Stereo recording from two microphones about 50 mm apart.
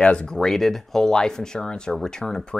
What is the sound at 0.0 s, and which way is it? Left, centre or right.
Speech, left.